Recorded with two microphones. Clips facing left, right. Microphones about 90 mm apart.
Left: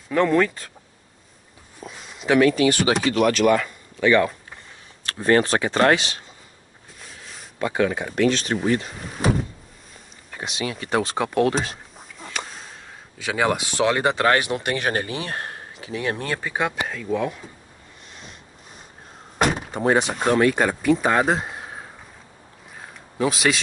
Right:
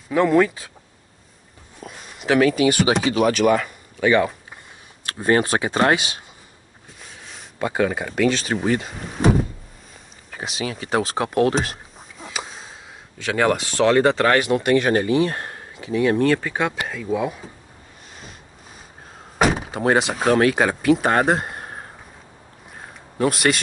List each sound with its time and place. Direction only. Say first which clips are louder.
0.1 s speech: right 2 dB; 5° right (ahead or behind)
1.8 s a sound: even; centre (ahead or behind)
2.8 s speech: right 1 dB; centre (ahead or behind)
7.5 s speech: right 1 dB; 20° right (ahead or behind)
8.0 s speech: even; 5° right (ahead or behind)
10.3 s a sound: right 1 dB; centre (ahead or behind)
13.2 s speech: right 2 dB; 10° left (ahead or behind)
15.9 s speech: right 9 dB; 20° left (ahead or behind); by 17.5 s 10° right (ahead or behind)
19.3 s speech: right 2 dB; centre (ahead or behind)
22.8 s a sound: right 2 dB; centre (ahead or behind)